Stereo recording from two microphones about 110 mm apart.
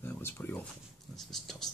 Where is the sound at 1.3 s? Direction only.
5° left (ahead or behind).